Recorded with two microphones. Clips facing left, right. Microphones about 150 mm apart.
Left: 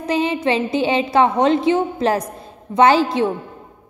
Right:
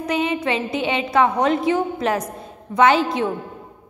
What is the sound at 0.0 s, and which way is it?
A woman's voice, 30° left (ahead or behind).